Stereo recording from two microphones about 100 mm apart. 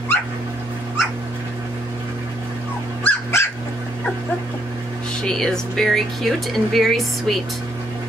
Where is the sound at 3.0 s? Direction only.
25° left (ahead or behind).